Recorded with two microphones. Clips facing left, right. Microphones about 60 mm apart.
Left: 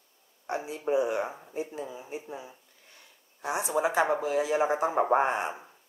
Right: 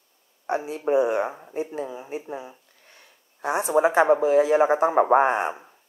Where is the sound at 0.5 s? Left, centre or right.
Right.